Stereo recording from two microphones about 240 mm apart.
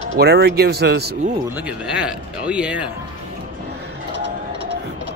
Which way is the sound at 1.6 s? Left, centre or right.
Centre.